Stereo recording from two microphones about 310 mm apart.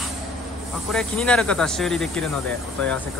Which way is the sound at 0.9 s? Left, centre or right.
Centre.